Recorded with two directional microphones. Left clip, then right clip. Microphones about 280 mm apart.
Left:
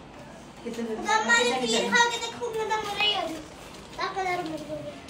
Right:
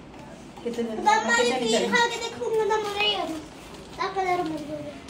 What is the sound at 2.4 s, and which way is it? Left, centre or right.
Speech, right.